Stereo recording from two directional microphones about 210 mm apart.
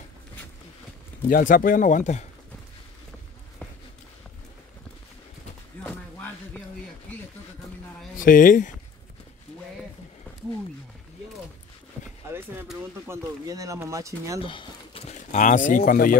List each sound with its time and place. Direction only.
1.3 s speech: 40° left (ahead or behind)
5.9 s a sound: 10° left (ahead or behind)
8.2 s speech: 40° left (ahead or behind)
12.3 s speech: 10° right (ahead or behind)
14.4 s speech: 25° left (ahead or behind); by 16.2 s 40° left (ahead or behind)